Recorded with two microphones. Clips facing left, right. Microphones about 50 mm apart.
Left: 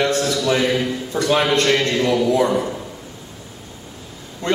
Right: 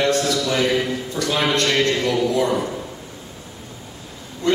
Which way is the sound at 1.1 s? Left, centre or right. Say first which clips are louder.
Left 4 dB; left.